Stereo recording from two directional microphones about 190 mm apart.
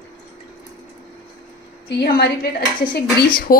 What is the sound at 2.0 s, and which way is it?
Dishes, 55° left (ahead or behind).